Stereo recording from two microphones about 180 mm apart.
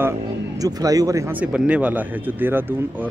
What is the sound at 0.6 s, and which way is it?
Speech, 20° right (ahead or behind).